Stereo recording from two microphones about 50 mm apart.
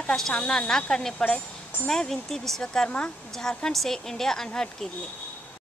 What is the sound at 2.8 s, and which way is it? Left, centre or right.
Speech, left.